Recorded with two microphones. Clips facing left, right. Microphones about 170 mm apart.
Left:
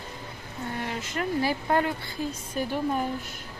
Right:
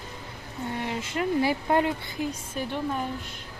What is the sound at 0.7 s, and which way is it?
A woman's voice, 20° right (ahead or behind).